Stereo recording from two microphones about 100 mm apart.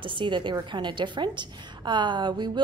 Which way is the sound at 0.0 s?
55° right (ahead or behind).